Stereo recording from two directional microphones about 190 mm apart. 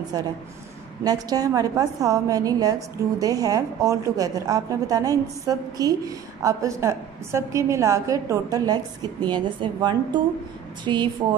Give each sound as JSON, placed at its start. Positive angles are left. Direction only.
{"t": 0.1, "sound": "a woman's voice", "side_deg": -20}